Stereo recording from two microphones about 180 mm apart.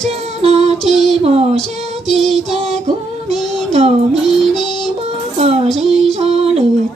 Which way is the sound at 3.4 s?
Centre (ahead or behind).